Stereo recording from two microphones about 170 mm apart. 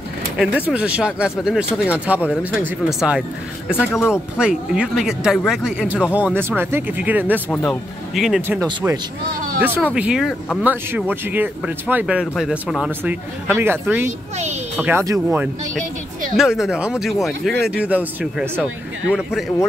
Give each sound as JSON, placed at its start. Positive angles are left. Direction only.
{"t": 0.4, "sound": "speech", "side_deg": -5}
{"t": 8.4, "sound": "speech", "side_deg": -15}
{"t": 8.6, "sound": "speech", "side_deg": -25}
{"t": 9.6, "sound": "speech", "side_deg": -10}
{"t": 15.8, "sound": "a sound", "side_deg": -50}
{"t": 16.3, "sound": "speech", "side_deg": 0}